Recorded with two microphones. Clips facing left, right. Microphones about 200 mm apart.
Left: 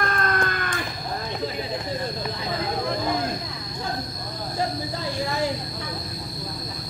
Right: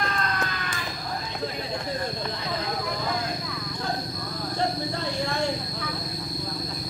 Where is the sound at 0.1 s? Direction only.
55° left (ahead or behind).